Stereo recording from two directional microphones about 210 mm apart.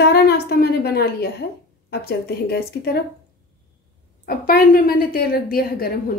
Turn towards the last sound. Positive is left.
turn(degrees=45)  # may be behind; listen again after turning